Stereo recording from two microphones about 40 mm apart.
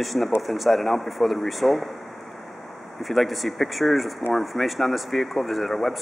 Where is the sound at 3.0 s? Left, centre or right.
Centre.